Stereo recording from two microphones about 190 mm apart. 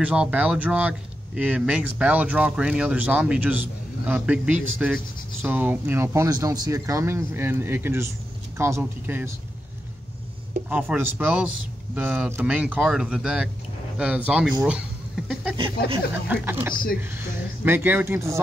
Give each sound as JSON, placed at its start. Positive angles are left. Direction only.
{"t": 0.0, "sound": "speech", "side_deg": -5}
{"t": 10.7, "sound": "speech", "side_deg": -10}
{"t": 15.5, "sound": "a sound", "side_deg": -25}
{"t": 16.3, "sound": "speech", "side_deg": -10}